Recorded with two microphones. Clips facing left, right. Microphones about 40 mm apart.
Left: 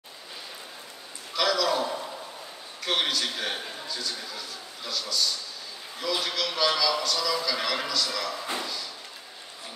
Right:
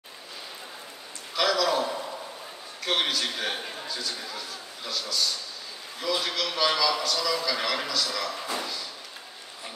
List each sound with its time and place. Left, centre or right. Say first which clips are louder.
1.3 s a man's voice: right 1 dB; centre